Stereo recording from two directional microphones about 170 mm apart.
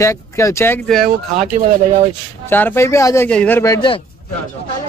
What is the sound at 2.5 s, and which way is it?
Speech, 10° left (ahead or behind).